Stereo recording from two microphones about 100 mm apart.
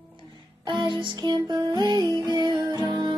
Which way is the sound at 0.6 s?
50° right (ahead or behind).